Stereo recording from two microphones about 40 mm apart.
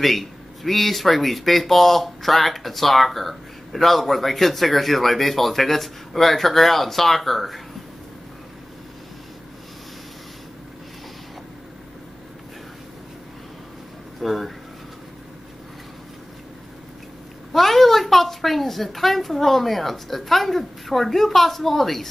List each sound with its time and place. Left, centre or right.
0.0 s speech: centre
14.2 s speech: centre
17.5 s speech: centre